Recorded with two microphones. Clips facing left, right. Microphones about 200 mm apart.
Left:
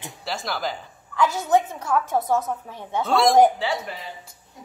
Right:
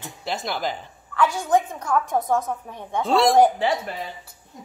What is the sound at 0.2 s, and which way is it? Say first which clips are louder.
A woman's voice: right 1 dB; centre (ahead or behind).